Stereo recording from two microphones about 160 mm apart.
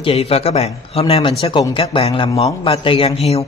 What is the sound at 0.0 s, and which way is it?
A man's voice, 40° left (ahead or behind).